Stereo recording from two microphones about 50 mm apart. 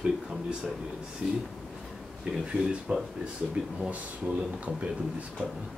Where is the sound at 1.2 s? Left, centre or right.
Centre.